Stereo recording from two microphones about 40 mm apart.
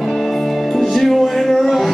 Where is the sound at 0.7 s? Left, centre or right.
Centre.